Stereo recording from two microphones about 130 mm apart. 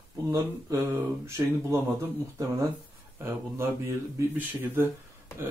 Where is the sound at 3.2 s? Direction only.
20° right (ahead or behind).